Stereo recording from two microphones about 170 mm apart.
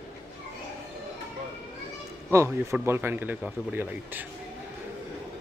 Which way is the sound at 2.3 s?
15° right (ahead or behind).